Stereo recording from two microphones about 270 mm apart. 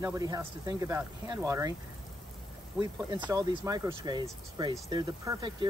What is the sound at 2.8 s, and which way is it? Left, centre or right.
Speech, centre.